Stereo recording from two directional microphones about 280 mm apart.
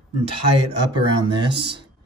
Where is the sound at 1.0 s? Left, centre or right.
Centre.